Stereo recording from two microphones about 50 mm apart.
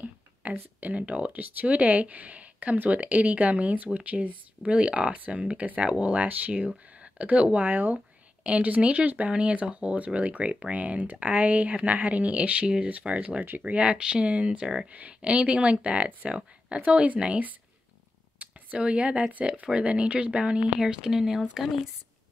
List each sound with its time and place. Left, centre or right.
0.0 s speech: right
7.0 s a sound: right
7.5 s speech: right
20.8 s a woman's voice: centre